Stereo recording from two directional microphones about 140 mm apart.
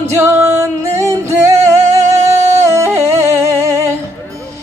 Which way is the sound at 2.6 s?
20° right (ahead or behind).